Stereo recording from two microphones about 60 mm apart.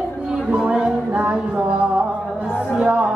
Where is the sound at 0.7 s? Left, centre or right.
Centre.